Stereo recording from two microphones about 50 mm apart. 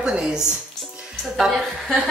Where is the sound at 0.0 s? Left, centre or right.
Centre.